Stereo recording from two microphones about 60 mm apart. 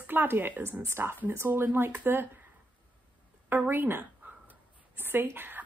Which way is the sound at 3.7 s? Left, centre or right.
Right.